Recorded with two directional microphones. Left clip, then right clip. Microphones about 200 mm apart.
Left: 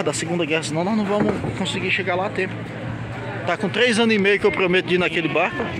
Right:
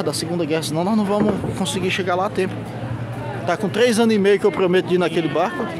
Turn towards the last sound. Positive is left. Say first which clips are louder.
# right 1 dB
turn(degrees=-5)  # may be behind; listen again after turning